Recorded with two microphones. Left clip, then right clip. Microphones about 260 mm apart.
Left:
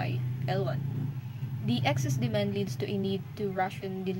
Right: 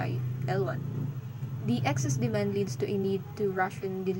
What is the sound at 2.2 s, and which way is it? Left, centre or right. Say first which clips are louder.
Speech: right 2 dB; centre.